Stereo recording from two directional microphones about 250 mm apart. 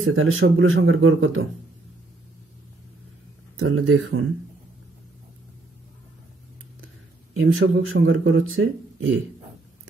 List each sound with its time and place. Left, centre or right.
0.0 s speech: right
3.5 s speech: right
7.3 s speech: right